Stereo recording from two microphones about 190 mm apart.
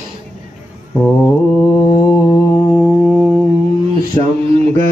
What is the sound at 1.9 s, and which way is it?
Mantra, 20° left (ahead or behind).